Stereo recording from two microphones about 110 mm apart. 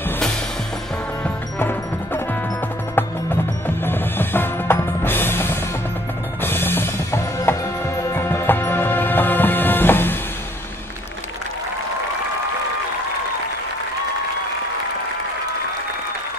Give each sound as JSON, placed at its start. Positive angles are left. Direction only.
{"t": 1.2, "sound": "music", "side_deg": 20}
{"t": 3.6, "sound": "music", "side_deg": 20}